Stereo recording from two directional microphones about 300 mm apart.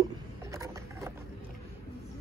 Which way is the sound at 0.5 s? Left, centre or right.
Centre.